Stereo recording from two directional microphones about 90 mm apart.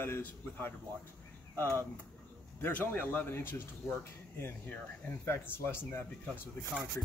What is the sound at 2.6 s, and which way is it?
Speech, 20° left (ahead or behind).